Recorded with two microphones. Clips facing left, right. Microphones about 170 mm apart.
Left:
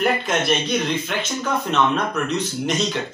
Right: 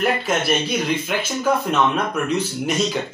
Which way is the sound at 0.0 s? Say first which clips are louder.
Even; 5° right (ahead or behind).